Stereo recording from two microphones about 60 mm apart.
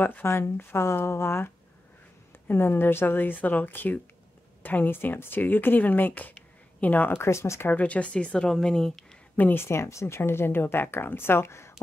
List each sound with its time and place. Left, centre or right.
0.0 s a woman's voice: left
7.2 s speech: left
7.7 s speech: left
9.4 s speech: left